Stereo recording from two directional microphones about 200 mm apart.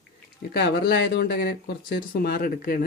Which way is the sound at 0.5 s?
55° left (ahead or behind).